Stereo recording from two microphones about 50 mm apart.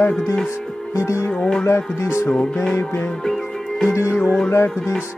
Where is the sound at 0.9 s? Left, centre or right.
Left.